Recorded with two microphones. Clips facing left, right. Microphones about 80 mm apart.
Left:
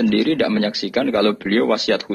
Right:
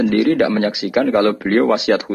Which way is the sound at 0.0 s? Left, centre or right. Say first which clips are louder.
Right 2 dB; centre.